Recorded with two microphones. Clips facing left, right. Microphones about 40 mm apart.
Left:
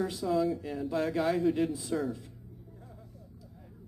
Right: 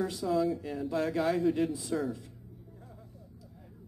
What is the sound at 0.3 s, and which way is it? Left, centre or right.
Speech, centre.